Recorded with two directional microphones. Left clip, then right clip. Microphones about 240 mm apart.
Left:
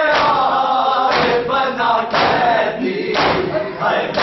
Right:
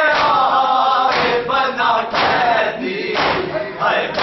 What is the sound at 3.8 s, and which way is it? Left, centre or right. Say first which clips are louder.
Chant: right 1 dB; centre.